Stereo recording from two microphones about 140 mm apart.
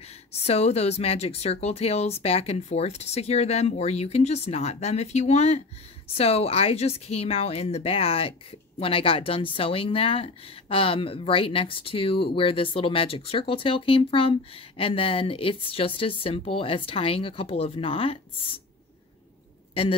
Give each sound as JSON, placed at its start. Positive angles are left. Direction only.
{"t": 0.3, "sound": "a woman's voice", "side_deg": 50}
{"t": 19.8, "sound": "speech", "side_deg": 45}